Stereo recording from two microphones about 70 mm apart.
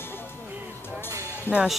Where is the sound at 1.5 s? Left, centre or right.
Left.